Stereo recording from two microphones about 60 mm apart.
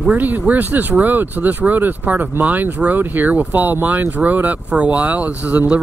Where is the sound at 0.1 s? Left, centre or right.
Right.